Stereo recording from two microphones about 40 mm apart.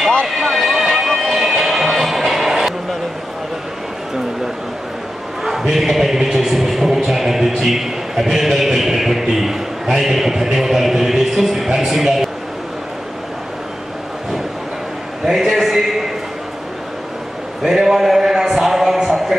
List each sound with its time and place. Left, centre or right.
0.3 s music: centre
5.4 s speech: centre
15.2 s a man's voice: centre
17.9 s a sound: centre